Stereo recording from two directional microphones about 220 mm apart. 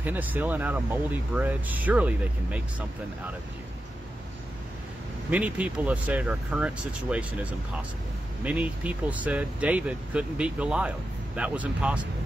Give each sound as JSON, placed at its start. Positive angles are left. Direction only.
{"t": 0.0, "sound": "speech", "side_deg": -10}
{"t": 5.3, "sound": "speech", "side_deg": -5}
{"t": 8.5, "sound": "speech", "side_deg": -5}